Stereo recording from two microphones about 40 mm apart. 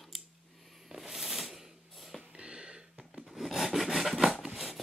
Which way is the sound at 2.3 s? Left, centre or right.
Right.